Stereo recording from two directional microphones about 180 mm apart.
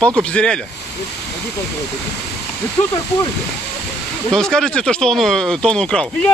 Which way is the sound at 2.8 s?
25° left (ahead or behind).